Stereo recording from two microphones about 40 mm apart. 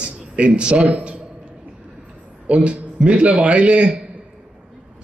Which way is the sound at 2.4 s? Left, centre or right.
Right.